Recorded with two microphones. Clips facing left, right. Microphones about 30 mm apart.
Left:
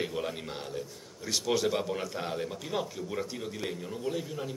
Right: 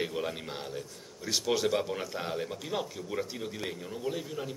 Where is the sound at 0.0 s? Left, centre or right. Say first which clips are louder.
Even; centre.